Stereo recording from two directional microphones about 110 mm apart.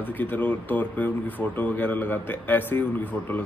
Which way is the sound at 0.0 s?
15° left (ahead or behind).